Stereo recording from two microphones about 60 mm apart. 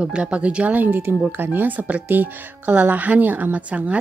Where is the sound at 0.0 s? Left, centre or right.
Centre.